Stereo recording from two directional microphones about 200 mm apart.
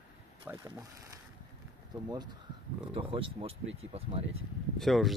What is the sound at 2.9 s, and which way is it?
Speech, 25° right (ahead or behind).